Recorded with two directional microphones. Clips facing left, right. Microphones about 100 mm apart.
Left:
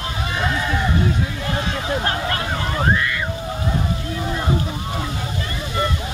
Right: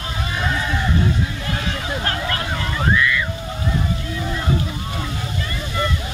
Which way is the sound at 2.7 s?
40° left (ahead or behind).